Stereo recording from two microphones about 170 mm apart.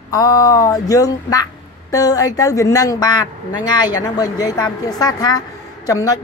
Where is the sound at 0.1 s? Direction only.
20° left (ahead or behind).